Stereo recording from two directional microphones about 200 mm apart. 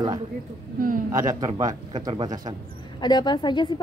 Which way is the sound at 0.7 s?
45° right (ahead or behind).